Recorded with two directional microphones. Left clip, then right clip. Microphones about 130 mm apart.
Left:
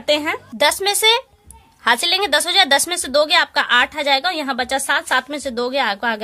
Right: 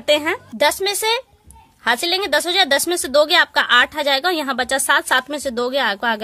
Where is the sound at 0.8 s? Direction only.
35° right (ahead or behind).